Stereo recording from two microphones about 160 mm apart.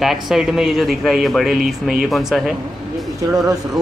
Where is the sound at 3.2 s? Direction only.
20° right (ahead or behind).